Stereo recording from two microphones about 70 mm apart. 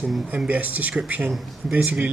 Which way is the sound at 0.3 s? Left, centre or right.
Centre.